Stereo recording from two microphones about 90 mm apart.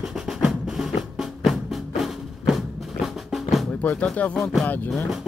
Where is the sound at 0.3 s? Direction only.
5° right (ahead or behind).